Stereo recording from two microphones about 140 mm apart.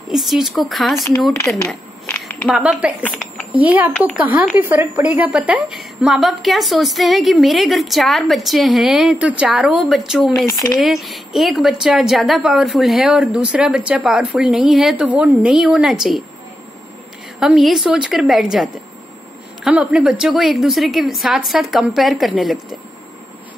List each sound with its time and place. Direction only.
0.1 s a woman's voice: centre (ahead or behind)
2.0 s a sound: 15° left (ahead or behind)
2.5 s a woman's voice: 5° right (ahead or behind)
10.4 s speech: 25° left (ahead or behind)
10.8 s a woman's voice: centre (ahead or behind)
17.4 s a woman's voice: centre (ahead or behind)